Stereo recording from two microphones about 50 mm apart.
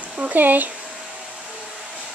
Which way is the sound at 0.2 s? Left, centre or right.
Right.